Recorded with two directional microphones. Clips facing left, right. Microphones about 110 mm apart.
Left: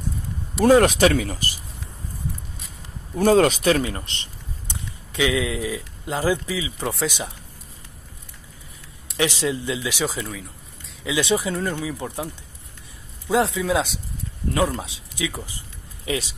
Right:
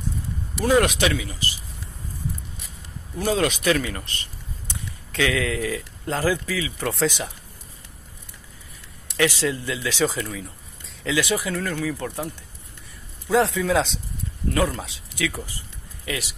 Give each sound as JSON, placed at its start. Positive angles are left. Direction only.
{"t": 0.7, "sound": "speech", "side_deg": 40}
{"t": 3.2, "sound": "speech", "side_deg": 45}
{"t": 9.1, "sound": "speech", "side_deg": 20}
{"t": 13.6, "sound": "speech", "side_deg": 10}
{"t": 14.5, "sound": "speech", "side_deg": 20}